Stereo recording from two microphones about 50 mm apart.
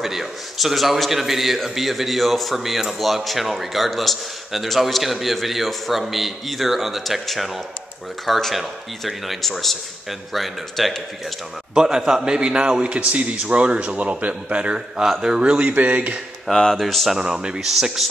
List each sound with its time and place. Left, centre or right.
0.0 s a man's voice: centre
11.7 s a man's voice: centre; by 16.2 s right
16.7 s a man's voice: centre
17.2 s a man's voice: centre